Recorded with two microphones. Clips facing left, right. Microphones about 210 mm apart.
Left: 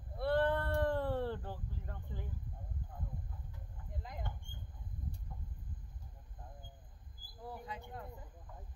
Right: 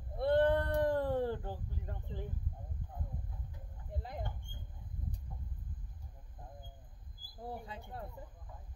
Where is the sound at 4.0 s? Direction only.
35° right (ahead or behind).